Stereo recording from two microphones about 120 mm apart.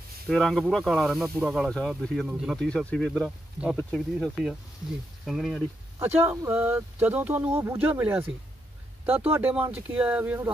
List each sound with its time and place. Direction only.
0.3 s speech: 5° left (ahead or behind)
6.2 s speech: 20° right (ahead or behind)